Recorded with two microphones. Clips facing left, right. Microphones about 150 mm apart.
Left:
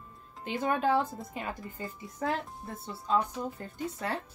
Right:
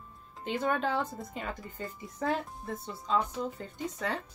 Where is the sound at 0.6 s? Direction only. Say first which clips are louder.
Left 3 dB; 10° left (ahead or behind).